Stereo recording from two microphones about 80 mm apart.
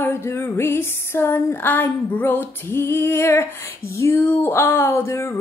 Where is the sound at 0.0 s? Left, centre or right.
Left.